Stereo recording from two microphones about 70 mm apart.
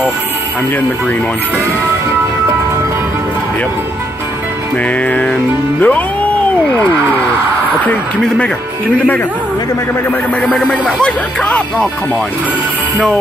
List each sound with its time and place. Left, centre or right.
4.8 s music: left
10.4 s speech: centre